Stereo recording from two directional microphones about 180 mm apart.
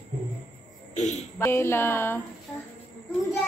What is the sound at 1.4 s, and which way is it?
Speech, 15° left (ahead or behind).